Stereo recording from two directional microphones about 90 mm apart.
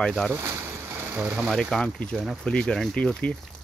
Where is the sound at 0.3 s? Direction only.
25° right (ahead or behind).